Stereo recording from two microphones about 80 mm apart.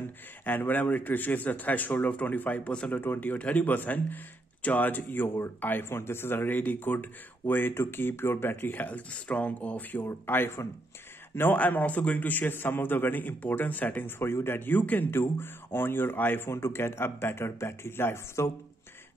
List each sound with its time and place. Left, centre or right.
0.5 s a man's voice: left